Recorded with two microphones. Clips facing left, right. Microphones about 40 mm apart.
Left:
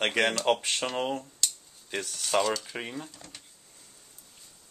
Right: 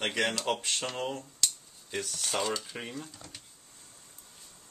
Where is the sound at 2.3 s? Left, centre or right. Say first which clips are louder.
Left 6 dB; left.